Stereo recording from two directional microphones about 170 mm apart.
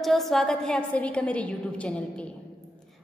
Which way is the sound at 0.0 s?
Centre (ahead or behind).